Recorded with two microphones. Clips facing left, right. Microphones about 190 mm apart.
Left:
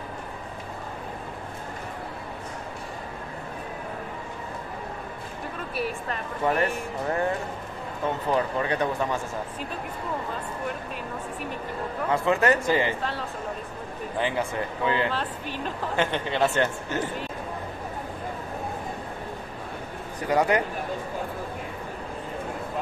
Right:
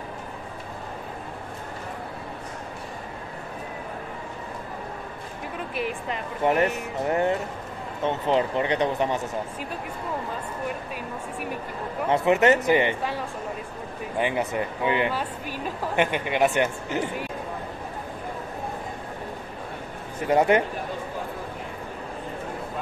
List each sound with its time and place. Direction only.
5.8 s speech: 20° right (ahead or behind)
12.1 s speech: 20° right (ahead or behind)
20.2 s speech: 25° right (ahead or behind)